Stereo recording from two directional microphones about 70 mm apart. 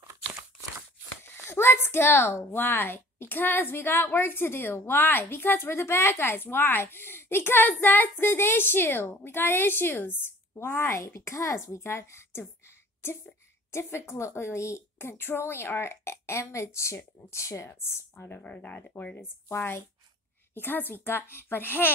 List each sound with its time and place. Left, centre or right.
1.3 s a woman's voice: left
18.4 s a woman's voice: left